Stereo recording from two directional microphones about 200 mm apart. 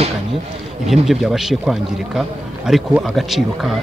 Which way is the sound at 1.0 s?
Centre (ahead or behind).